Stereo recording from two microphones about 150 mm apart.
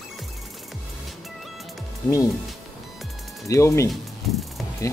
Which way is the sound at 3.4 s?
20° left (ahead or behind).